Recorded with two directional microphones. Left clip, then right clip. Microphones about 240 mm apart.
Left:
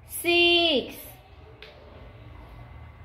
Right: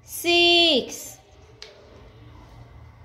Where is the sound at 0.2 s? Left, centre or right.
Centre.